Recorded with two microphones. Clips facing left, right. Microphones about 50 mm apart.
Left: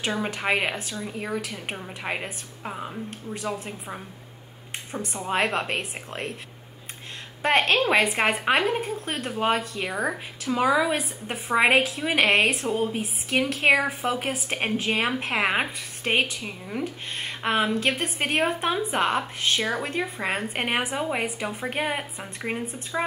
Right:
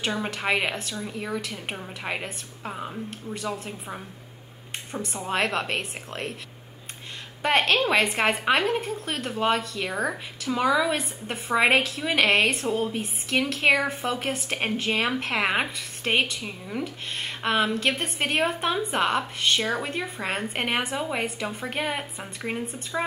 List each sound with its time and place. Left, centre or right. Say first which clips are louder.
0.2 s a woman's voice: left 1 dB; centre
1.1 s speech: left 1 dB; centre
1.4 s a woman's voice: even; centre
7.4 s a woman's voice: left 1 dB; centre
10.9 s a woman's voice: left 1 dB; centre